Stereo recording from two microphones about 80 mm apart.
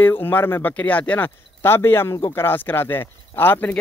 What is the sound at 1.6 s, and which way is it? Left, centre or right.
Speech, left.